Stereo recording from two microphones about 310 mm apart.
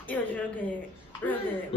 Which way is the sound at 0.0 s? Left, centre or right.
Centre.